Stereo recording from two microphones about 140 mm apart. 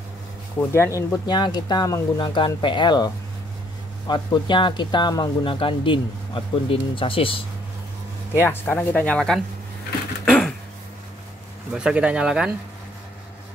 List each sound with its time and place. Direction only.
0.6 s speech: 20° left (ahead or behind)
4.1 s speech: 35° left (ahead or behind)
8.4 s speech: 15° left (ahead or behind)
11.7 s speech: 5° right (ahead or behind)